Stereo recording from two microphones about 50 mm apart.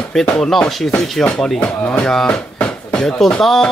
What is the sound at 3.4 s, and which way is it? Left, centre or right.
Speech, centre.